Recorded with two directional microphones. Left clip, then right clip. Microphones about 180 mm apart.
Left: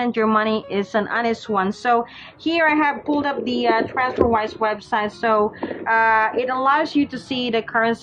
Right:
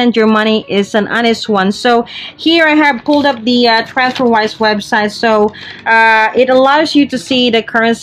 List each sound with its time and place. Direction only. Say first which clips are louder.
0.0 s speech: right 8 dB; 50° right (ahead or behind)